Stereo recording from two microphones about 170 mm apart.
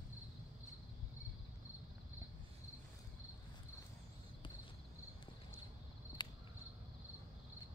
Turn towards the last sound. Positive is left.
turn(degrees=25)  # may be behind; listen again after turning